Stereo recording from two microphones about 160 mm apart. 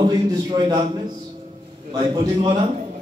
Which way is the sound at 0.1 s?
25° right (ahead or behind).